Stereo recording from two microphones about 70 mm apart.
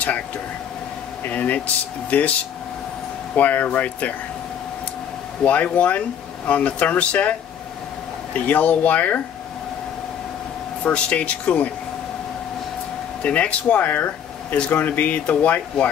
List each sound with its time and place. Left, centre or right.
1.3 s speech: left
3.3 s speech: left
5.4 s speech: left
10.8 s speech: centre
13.2 s speech: centre